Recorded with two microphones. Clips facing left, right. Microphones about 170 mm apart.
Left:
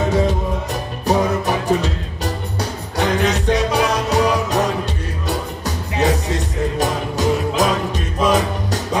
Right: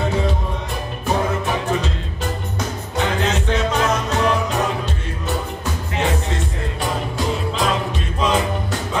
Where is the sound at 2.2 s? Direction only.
35° left (ahead or behind).